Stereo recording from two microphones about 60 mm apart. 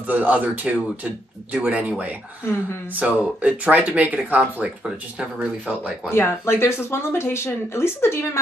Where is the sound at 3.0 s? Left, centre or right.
Right.